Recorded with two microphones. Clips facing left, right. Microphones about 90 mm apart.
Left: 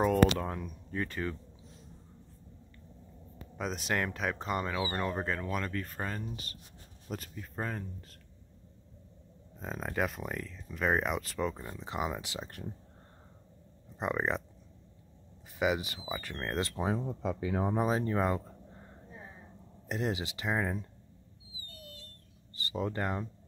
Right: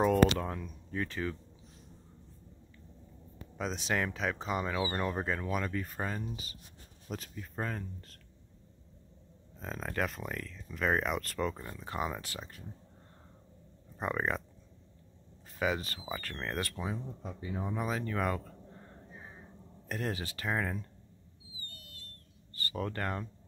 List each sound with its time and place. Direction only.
0.4 s speech: 5° left (ahead or behind)
3.5 s speech: 5° left (ahead or behind)
9.6 s speech: 10° left (ahead or behind)
13.9 s speech: 15° left (ahead or behind)
15.6 s speech: 15° left (ahead or behind)
16.8 s speech: 80° left
17.6 s speech: 35° left (ahead or behind); by 20.9 s 15° left (ahead or behind)
22.6 s speech: 20° left (ahead or behind)